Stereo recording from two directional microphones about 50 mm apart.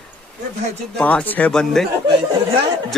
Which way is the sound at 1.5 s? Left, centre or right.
Centre.